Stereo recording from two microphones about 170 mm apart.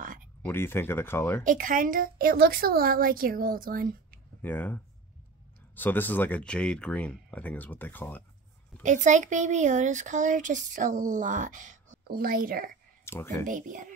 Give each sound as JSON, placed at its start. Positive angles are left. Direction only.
{"t": 0.0, "sound": "a sound", "side_deg": -50}
{"t": 0.5, "sound": "speech", "side_deg": 15}
{"t": 1.4, "sound": "a woman's voice", "side_deg": -50}
{"t": 4.4, "sound": "speech", "side_deg": 10}
{"t": 8.8, "sound": "speech", "side_deg": -45}
{"t": 13.0, "sound": "speech", "side_deg": 15}
{"t": 13.4, "sound": "speech", "side_deg": -50}